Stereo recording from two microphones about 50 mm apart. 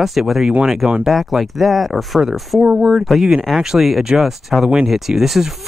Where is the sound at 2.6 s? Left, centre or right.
Centre.